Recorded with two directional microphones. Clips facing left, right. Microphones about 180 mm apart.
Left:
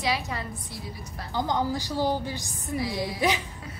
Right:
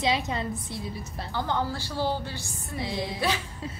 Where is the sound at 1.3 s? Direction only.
15° left (ahead or behind).